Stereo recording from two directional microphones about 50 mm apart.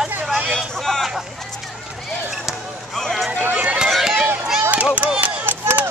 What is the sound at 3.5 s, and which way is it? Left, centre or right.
Run, right.